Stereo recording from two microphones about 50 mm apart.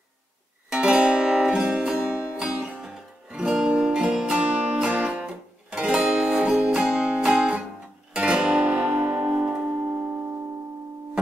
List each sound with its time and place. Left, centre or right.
0.7 s music: centre
2.5 s music: right
4.4 s music: right
5.2 s music: centre
8.1 s music: right